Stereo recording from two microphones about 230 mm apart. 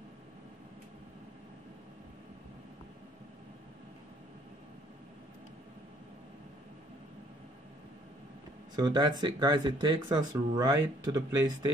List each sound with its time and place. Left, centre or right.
8.7 s speech: centre